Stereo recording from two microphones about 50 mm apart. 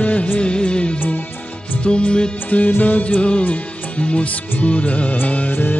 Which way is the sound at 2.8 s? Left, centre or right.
Left.